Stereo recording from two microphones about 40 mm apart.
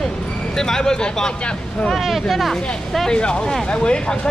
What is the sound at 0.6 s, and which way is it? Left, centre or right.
Speech, centre.